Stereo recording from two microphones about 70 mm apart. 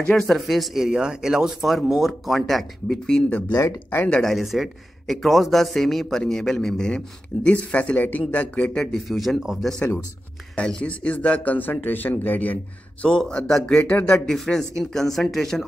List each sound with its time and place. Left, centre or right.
0.0 s speech: centre
3.5 s speech: left
4.1 s speech: centre
7.4 s speech: centre
9.1 s speech: centre
10.5 s speech: centre
13.0 s a man's voice: centre
13.7 s speech: left
14.2 s speech: centre